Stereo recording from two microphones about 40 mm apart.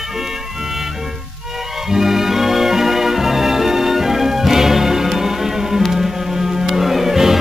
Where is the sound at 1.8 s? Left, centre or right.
Centre.